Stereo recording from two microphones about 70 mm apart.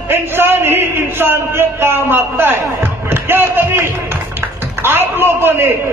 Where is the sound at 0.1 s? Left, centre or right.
Right.